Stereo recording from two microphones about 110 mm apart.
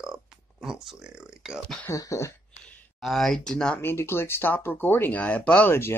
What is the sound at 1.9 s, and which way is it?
Speech, 30° left (ahead or behind).